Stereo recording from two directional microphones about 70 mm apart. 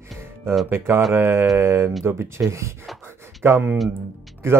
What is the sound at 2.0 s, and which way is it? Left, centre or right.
Speech, right.